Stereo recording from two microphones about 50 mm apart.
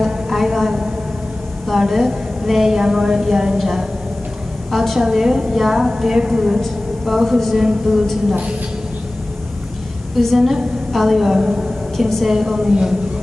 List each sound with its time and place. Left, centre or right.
0.0 s a sound: centre
1.7 s a woman's voice: centre
7.5 s a woman's voice: centre
10.1 s a woman's voice: centre